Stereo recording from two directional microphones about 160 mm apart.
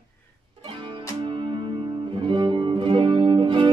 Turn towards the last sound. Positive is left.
turn(degrees=-30)  # may be behind; listen again after turning